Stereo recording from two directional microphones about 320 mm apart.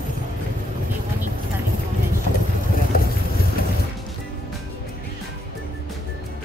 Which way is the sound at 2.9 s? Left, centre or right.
Left.